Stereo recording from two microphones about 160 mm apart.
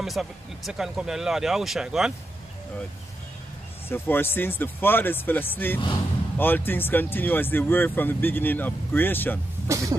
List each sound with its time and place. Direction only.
0.0 s speech: centre (ahead or behind)
3.9 s speech: 15° left (ahead or behind)
9.7 s a sound: 20° right (ahead or behind)